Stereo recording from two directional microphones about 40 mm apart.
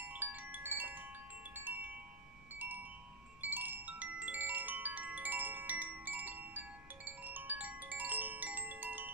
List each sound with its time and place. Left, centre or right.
0.0 s wind chime: right
3.3 s music: right
7.1 s glockenspiel: right